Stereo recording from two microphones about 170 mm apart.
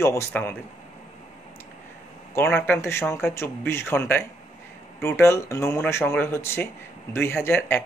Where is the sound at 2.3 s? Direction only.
15° left (ahead or behind).